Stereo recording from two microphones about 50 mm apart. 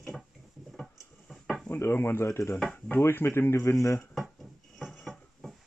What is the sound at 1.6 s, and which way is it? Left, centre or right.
Speech, left.